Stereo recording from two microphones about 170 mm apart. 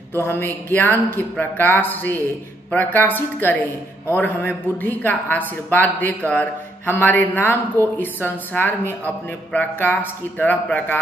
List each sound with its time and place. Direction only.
0.1 s a man's voice: 15° left (ahead or behind)